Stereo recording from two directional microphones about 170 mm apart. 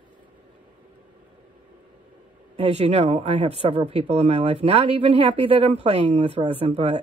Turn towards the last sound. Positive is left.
turn(degrees=-35)  # may be behind; listen again after turning